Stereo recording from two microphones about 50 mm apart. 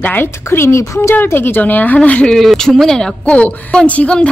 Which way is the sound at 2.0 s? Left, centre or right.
Left.